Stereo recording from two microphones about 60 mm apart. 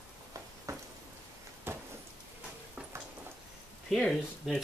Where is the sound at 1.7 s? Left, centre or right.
Right.